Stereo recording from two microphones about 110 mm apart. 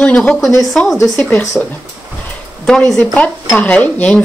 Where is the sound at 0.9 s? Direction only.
Centre (ahead or behind).